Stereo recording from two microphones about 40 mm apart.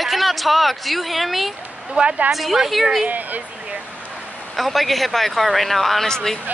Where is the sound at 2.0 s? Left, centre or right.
Right.